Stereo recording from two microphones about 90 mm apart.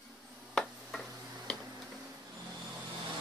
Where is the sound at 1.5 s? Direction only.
10° left (ahead or behind).